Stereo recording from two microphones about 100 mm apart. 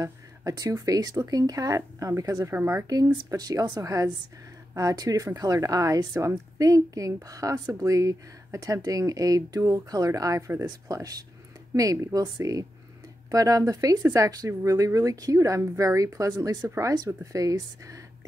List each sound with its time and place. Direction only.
0.0 s speech: 35° right (ahead or behind)
2.9 s speech: 40° right (ahead or behind)